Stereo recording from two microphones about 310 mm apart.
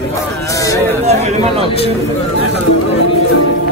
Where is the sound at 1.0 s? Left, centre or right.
Right.